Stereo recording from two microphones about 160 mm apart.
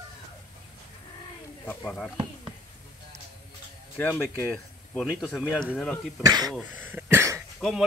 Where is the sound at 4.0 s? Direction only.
10° left (ahead or behind).